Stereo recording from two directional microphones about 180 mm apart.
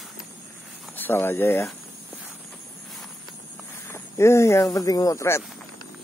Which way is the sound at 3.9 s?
15° left (ahead or behind).